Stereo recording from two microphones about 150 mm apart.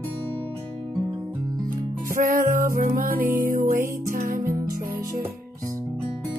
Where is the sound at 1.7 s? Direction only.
65° right (ahead or behind).